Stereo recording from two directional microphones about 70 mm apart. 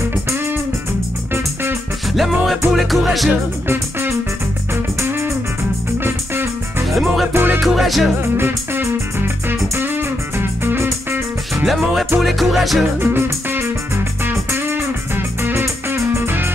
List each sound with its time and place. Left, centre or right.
1.3 s music: right
2.1 s music: centre
3.6 s music: right
6.0 s music: right
7.6 s music: centre
8.2 s music: right
11.6 s music: centre
13.0 s music: right